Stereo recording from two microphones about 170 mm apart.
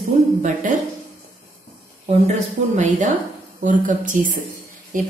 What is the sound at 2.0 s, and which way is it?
A woman's voice, 40° right (ahead or behind).